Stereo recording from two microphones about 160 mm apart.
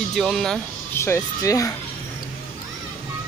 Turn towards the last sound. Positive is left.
turn(degrees=20)  # may be behind; listen again after turning